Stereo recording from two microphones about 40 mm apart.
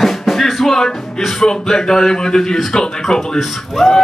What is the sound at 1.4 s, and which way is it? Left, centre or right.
Speech, centre.